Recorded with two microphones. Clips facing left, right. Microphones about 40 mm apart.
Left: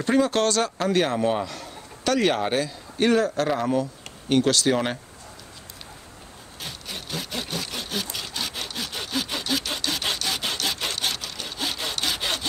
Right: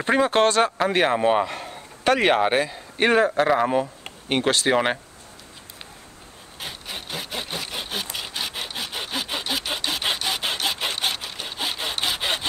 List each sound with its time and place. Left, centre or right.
0.0 s speech: right
6.6 s wood: right